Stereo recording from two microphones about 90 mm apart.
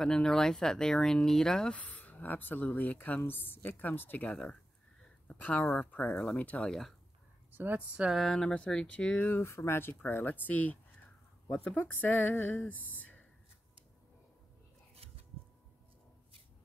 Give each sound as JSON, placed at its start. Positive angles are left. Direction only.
{"t": 0.0, "sound": "speech", "side_deg": 10}
{"t": 6.7, "sound": "speech", "side_deg": 5}
{"t": 7.5, "sound": "speech", "side_deg": -20}
{"t": 8.0, "sound": "speech", "side_deg": 0}
{"t": 9.3, "sound": "speech", "side_deg": 30}